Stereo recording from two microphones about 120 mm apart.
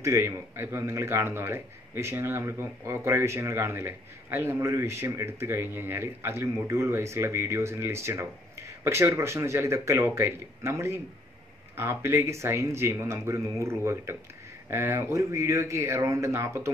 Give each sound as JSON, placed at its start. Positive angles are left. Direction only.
{"t": 0.0, "sound": "a man's voice", "side_deg": -25}